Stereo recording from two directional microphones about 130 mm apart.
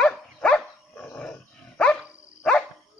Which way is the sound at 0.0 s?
5° left (ahead or behind).